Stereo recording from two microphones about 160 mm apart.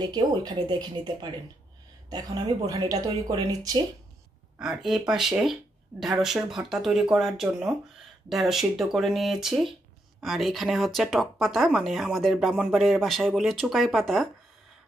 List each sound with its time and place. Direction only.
0.0 s speech: 25° right (ahead or behind)
4.6 s speech: 5° right (ahead or behind)